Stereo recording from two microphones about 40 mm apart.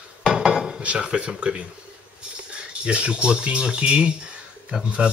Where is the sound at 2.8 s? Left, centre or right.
Right.